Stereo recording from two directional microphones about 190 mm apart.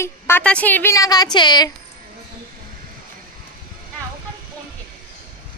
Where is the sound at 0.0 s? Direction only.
10° left (ahead or behind).